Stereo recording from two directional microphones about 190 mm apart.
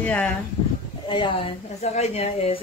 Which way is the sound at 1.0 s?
25° left (ahead or behind).